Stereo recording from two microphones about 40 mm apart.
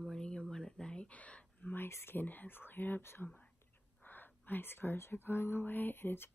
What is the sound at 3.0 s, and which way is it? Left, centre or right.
Speech, left.